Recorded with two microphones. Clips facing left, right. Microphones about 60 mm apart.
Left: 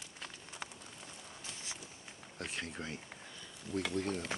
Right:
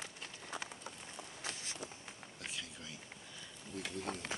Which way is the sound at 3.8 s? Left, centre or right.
Left.